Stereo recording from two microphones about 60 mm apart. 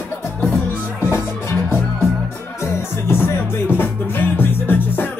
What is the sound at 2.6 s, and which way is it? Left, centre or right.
Music, left.